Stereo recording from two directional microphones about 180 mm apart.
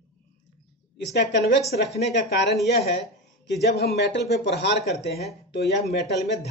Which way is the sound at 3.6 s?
60° left (ahead or behind).